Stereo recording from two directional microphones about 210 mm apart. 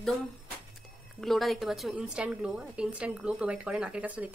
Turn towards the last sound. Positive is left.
turn(degrees=-5)  # may be behind; listen again after turning